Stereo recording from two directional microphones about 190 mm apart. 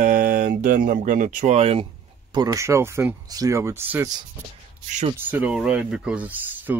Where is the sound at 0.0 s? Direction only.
45° right (ahead or behind).